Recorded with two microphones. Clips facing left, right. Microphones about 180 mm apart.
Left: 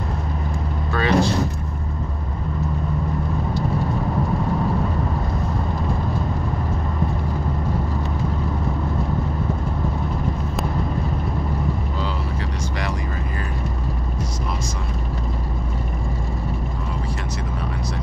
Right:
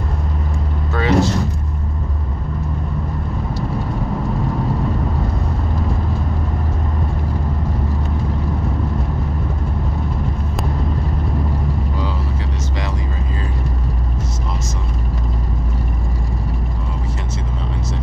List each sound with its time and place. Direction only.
0.9 s vehicle: 20° right (ahead or behind)